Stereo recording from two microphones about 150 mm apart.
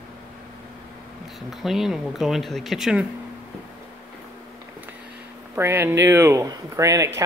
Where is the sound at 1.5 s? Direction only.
Centre (ahead or behind).